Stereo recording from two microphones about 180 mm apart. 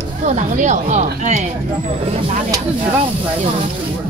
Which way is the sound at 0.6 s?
40° right (ahead or behind).